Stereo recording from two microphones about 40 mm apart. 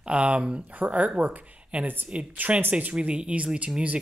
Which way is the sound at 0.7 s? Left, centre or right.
Right.